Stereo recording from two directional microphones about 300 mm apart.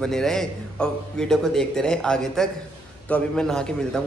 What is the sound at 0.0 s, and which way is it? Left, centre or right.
A man's voice, centre.